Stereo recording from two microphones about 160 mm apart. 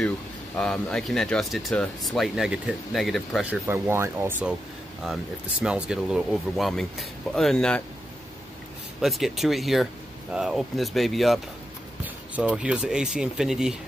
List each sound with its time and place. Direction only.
0.6 s speech: 5° left (ahead or behind)
3.6 s speech: 15° right (ahead or behind); by 7.8 s 5° left (ahead or behind)
9.0 s speech: centre (ahead or behind)
12.4 s speech: 5° right (ahead or behind)